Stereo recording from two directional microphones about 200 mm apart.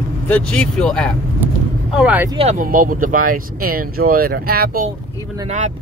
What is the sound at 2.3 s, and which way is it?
Speech, 35° right (ahead or behind).